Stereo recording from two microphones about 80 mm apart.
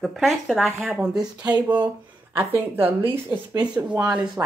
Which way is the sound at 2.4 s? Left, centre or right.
Right.